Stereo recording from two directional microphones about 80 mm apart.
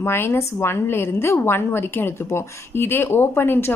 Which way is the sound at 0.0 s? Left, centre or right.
Left.